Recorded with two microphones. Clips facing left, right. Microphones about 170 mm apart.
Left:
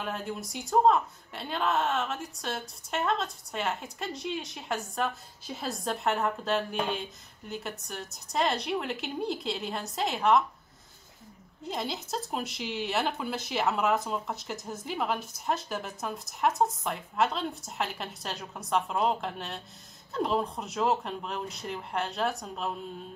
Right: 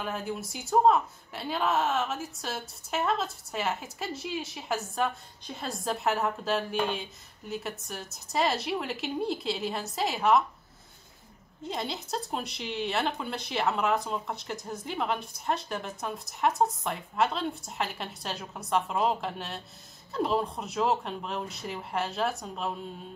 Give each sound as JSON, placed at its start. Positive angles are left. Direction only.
{"t": 0.0, "sound": "speech", "side_deg": 0}
{"t": 11.7, "sound": "speech", "side_deg": 0}